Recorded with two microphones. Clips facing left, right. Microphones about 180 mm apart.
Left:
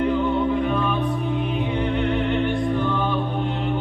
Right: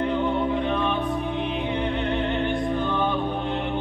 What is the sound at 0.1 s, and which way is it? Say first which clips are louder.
Music: left 3 dB; 20° right (ahead or behind).